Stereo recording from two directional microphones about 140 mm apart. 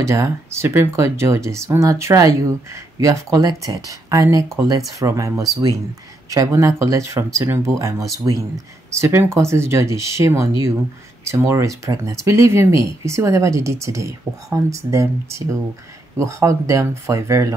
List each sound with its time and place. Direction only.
0.0 s speech: 20° right (ahead or behind)